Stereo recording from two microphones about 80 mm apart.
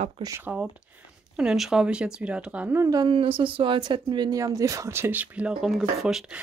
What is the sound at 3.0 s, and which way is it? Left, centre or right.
Speech, right.